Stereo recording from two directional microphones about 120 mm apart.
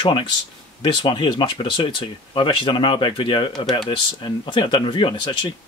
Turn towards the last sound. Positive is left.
turn(degrees=40)  # may be behind; listen again after turning